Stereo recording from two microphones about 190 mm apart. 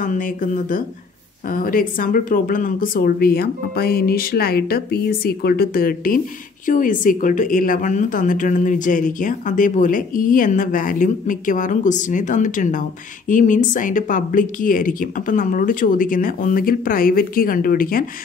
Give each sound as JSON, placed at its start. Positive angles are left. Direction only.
{"t": 0.0, "sound": "speech", "side_deg": 45}